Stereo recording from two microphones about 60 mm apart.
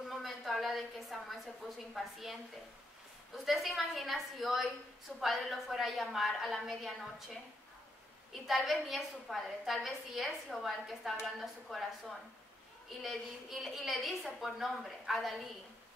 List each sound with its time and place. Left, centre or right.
0.1 s a sound: centre
2.0 s a woman's voice: centre
3.4 s a woman's voice: centre
8.3 s a woman's voice: centre
13.0 s a woman's voice: centre